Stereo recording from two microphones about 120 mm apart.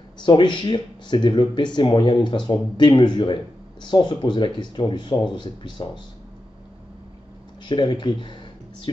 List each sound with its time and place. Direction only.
0.2 s speech: 40° left (ahead or behind)
7.6 s speech: 40° left (ahead or behind)